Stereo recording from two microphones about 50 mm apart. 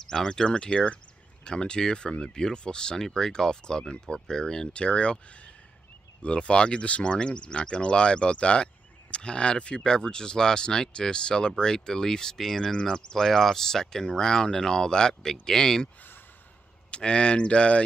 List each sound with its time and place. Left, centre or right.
0.0 s speech: centre
16.9 s speech: centre